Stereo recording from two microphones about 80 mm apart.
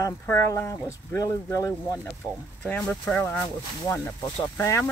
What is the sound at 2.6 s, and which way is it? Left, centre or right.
Speech, centre.